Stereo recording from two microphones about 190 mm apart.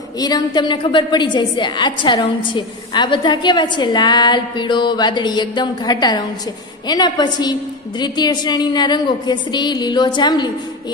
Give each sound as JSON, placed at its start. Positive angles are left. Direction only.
{"t": 0.2, "sound": "a woman's voice", "side_deg": 25}